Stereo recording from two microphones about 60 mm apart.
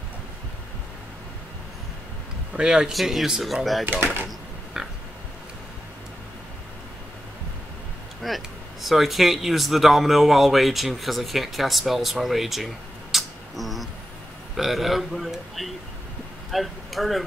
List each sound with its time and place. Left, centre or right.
2.5 s speech: centre
3.8 s speech: right
4.7 s a sound: centre
8.2 s speech: centre